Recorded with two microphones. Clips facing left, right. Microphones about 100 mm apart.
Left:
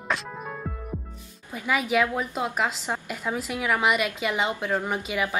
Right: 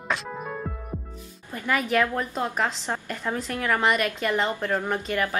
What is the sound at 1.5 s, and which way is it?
A woman's voice, 5° left (ahead or behind).